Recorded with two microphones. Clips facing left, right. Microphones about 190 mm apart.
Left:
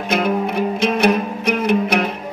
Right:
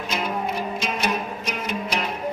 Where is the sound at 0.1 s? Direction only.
60° left (ahead or behind).